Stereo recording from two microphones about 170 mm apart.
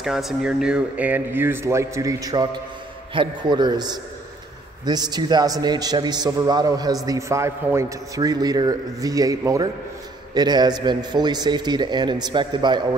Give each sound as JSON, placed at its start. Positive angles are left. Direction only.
{"t": 0.0, "sound": "a man's voice", "side_deg": 0}